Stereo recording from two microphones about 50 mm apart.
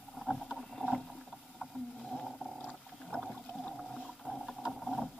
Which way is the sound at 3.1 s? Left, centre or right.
Left.